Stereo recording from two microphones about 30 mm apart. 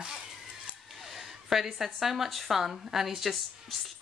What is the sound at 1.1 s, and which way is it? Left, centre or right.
A woman's voice, centre.